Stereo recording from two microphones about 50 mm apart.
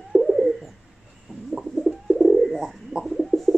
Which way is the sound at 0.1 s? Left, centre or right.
Centre.